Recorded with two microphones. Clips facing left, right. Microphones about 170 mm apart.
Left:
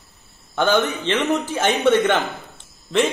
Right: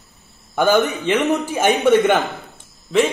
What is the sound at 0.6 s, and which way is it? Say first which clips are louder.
A man's voice: right 3 dB; 15° right (ahead or behind).